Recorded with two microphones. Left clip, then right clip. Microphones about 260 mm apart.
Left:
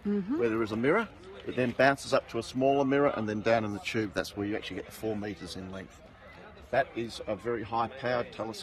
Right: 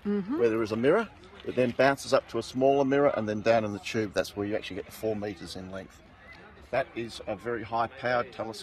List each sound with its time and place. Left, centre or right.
0.4 s speech: right
6.7 s a man's voice: centre